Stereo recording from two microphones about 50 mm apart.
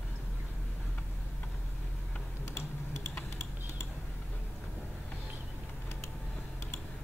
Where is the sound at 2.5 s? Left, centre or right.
Left.